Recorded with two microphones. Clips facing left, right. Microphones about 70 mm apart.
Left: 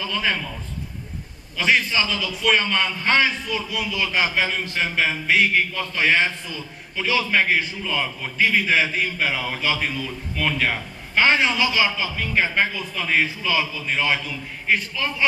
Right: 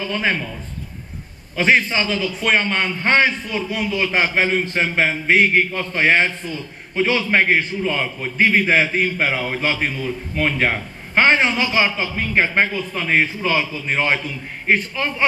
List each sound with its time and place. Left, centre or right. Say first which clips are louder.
0.0 s a man's voice: right 3 dB; right
1.6 s a man's voice: right 3 dB; right